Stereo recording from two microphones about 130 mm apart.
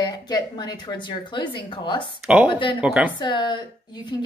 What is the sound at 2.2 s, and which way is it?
Speech, 10° right (ahead or behind).